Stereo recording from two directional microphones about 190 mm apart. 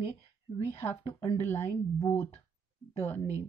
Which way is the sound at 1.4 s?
15° left (ahead or behind).